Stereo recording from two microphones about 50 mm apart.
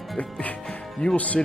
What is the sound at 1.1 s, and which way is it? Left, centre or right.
Speech, left.